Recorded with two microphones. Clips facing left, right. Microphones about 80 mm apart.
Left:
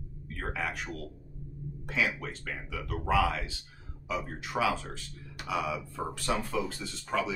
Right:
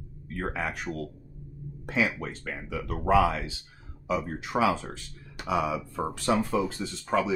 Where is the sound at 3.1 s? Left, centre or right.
Right.